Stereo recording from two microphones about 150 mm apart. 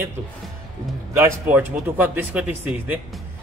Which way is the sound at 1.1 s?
15° right (ahead or behind).